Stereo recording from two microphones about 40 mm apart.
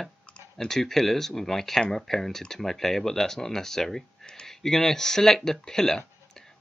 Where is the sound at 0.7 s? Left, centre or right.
Centre.